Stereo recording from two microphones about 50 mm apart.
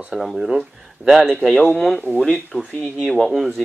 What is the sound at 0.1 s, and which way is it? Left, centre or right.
Speech, centre.